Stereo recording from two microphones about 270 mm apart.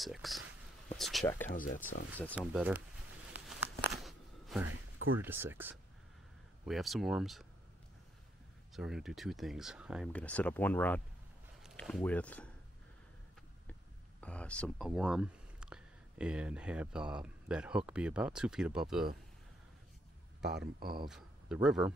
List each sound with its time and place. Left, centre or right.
0.0 s speech: centre
1.5 s speech: left
2.3 s speech: centre
3.3 s a sound: centre
5.2 s speech: centre
8.7 s speech: centre
14.2 s speech: centre
20.5 s speech: right
21.1 s speech: centre